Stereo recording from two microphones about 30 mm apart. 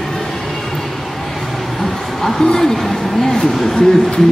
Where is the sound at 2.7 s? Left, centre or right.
Centre.